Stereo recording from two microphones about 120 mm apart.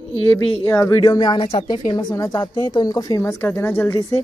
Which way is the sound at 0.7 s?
25° left (ahead or behind).